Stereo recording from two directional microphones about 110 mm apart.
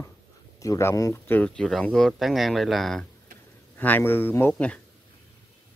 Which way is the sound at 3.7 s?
15° left (ahead or behind).